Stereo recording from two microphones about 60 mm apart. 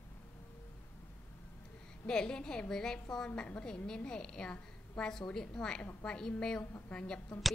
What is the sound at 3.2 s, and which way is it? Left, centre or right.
A woman's voice, left.